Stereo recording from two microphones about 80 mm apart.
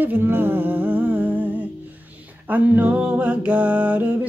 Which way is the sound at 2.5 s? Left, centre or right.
Centre.